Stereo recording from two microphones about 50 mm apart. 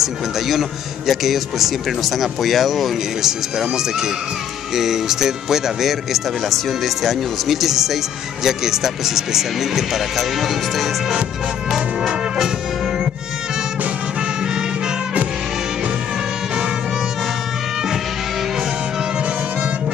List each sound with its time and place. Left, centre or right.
0.0 s a man's voice: centre
12.1 s brass instrument: centre